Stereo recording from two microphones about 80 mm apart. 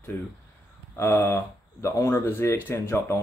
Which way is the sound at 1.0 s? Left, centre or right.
Left.